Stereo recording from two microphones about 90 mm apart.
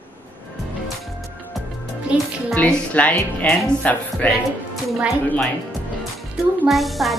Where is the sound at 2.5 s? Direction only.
15° left (ahead or behind).